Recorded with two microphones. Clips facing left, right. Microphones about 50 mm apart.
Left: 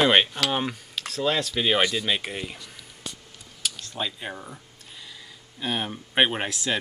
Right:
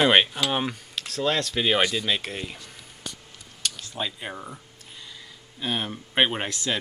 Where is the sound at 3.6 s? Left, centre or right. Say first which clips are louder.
Even; centre.